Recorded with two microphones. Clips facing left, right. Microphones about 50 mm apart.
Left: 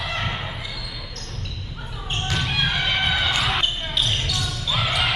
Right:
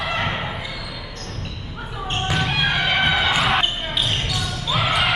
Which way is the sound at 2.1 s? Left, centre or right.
Centre.